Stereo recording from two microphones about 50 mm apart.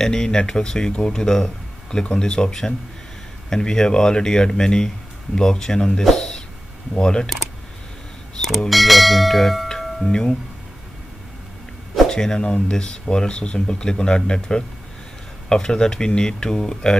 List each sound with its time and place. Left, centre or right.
0.0 s speech: centre
7.0 s speech: centre
8.4 s speech: centre
9.7 s music: centre
12.1 s speech: centre